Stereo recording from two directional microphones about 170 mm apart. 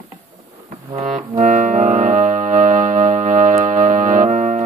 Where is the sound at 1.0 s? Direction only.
45° right (ahead or behind).